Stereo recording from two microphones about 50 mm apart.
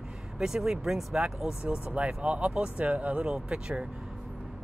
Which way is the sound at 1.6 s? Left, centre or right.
Right.